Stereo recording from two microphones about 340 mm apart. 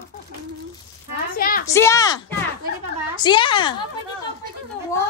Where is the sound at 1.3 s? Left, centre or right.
Left.